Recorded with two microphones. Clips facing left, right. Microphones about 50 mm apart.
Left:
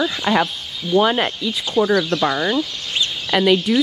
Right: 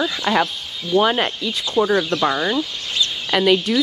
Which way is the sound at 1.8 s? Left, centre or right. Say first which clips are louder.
Left 1 dB; left.